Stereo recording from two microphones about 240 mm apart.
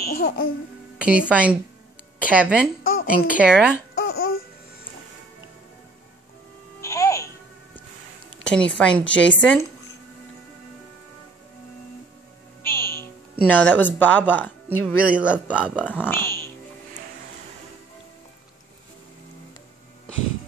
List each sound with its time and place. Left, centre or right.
0.0 s speech: left
0.9 s music: centre
1.3 s a man's voice: centre
2.8 s a sound: left
3.1 s a man's voice: centre
3.9 s babbling: left
6.8 s music: centre
8.5 s a man's voice: centre
12.6 s music: left
12.9 s speech: centre
15.0 s a man's voice: centre
15.9 s speech: centre